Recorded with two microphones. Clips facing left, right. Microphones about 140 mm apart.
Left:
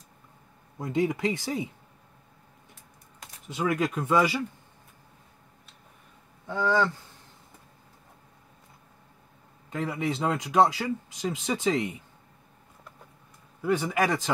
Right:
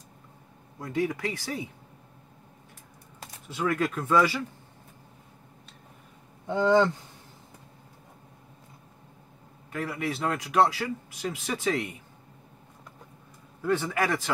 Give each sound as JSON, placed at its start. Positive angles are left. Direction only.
{"t": 0.7, "sound": "speech", "side_deg": 20}
{"t": 3.4, "sound": "speech", "side_deg": 15}
{"t": 6.4, "sound": "speech", "side_deg": -20}
{"t": 9.7, "sound": "speech", "side_deg": 20}
{"t": 13.6, "sound": "speech", "side_deg": 15}